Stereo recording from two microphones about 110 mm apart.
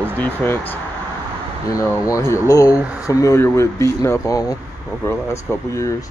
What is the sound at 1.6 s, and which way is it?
Speech, 30° left (ahead or behind).